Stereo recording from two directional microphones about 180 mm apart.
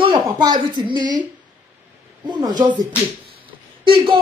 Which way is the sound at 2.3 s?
25° right (ahead or behind).